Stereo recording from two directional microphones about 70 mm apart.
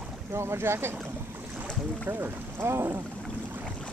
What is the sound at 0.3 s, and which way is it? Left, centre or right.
Speech, right.